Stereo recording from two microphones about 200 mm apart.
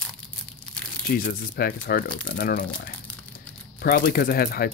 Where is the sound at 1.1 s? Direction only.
45° left (ahead or behind).